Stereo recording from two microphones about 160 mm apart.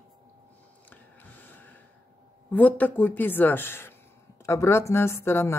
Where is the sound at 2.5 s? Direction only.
10° left (ahead or behind).